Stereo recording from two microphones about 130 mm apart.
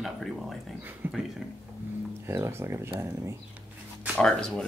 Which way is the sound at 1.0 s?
15° right (ahead or behind).